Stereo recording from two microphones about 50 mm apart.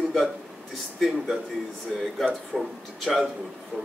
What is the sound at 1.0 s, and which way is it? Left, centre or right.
Speech, centre.